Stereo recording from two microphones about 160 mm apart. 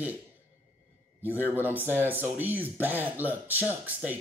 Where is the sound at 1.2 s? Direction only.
10° right (ahead or behind).